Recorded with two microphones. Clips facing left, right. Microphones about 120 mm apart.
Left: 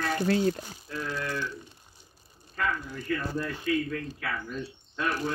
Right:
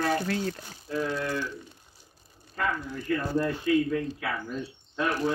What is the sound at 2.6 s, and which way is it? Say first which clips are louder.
Speech: right 1 dB; 20° right (ahead or behind).